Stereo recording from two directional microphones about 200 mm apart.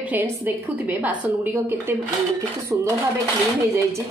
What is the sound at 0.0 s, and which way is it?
A woman's voice, 10° right (ahead or behind).